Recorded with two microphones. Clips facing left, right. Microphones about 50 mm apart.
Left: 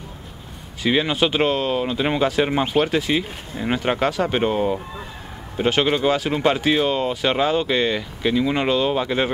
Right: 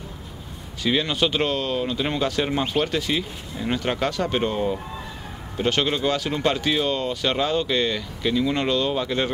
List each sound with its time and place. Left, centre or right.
0.8 s speech: centre